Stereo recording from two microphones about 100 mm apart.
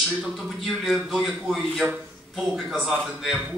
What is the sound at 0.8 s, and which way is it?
A man's voice, 5° right (ahead or behind).